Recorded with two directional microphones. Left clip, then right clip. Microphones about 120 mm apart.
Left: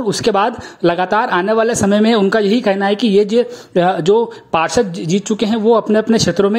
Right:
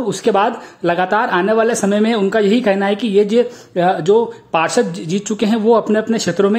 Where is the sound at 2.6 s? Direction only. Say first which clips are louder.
Left 1 dB; 20° left (ahead or behind).